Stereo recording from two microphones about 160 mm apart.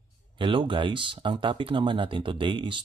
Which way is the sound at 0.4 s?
30° right (ahead or behind).